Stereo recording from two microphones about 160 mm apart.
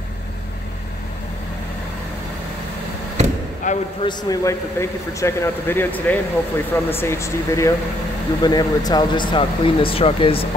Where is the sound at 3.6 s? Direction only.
50° left (ahead or behind).